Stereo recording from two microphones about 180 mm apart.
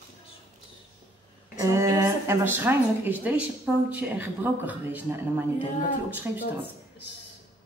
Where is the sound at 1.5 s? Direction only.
15° right (ahead or behind).